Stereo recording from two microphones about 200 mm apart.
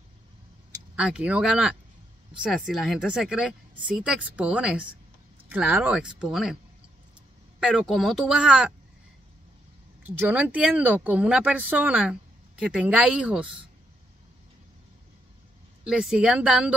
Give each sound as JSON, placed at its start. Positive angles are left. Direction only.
{"t": 0.9, "sound": "speech", "side_deg": -5}
{"t": 7.6, "sound": "speech", "side_deg": 0}
{"t": 10.0, "sound": "speech", "side_deg": -5}
{"t": 15.8, "sound": "speech", "side_deg": 0}